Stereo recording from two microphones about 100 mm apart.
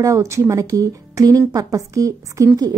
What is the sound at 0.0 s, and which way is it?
A woman's voice, 30° right (ahead or behind).